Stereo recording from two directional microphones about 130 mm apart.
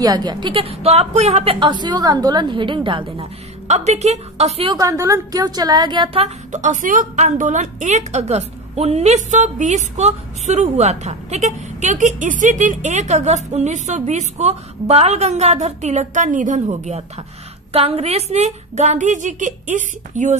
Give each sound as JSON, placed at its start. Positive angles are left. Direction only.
{"t": 0.0, "sound": "a woman's voice", "side_deg": -30}
{"t": 3.6, "sound": "a woman's voice", "side_deg": -60}
{"t": 4.6, "sound": "a woman's voice", "side_deg": -25}
{"t": 6.2, "sound": "a woman's voice", "side_deg": -70}
{"t": 17.7, "sound": "a woman's voice", "side_deg": -50}